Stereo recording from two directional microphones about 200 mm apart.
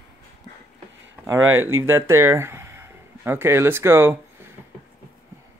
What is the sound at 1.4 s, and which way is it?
Speech, 90° right.